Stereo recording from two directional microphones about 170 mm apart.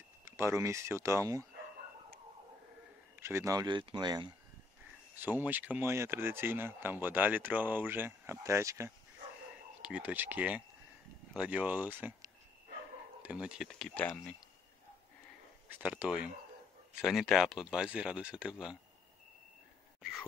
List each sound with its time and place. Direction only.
0.2 s speech: 15° right (ahead or behind)
3.2 s speech: 15° right (ahead or behind)
5.1 s speech: 10° right (ahead or behind)
15.7 s speech: 5° right (ahead or behind)
20.0 s a sound: 5° right (ahead or behind)